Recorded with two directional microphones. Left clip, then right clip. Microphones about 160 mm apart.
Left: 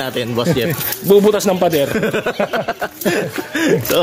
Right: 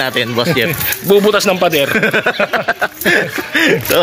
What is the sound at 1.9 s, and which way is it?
Speech, 10° right (ahead or behind).